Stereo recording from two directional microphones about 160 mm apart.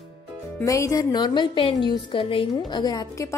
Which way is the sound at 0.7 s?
20° left (ahead or behind).